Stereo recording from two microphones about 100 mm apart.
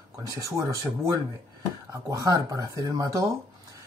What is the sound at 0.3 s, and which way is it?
Speech, 30° right (ahead or behind).